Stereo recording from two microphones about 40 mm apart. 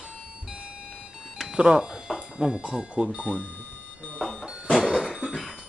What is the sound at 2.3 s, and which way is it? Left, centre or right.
Speech, centre.